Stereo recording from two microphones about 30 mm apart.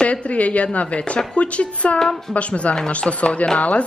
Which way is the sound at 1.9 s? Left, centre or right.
Centre.